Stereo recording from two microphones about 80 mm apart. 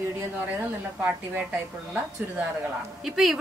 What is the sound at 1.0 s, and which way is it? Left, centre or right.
Speech, centre.